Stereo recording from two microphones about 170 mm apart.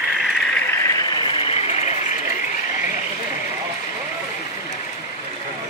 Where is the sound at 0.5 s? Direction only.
10° left (ahead or behind); by 2.1 s 40° left (ahead or behind).